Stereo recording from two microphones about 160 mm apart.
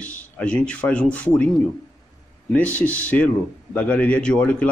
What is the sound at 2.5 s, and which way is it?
A man's voice, 10° left (ahead or behind).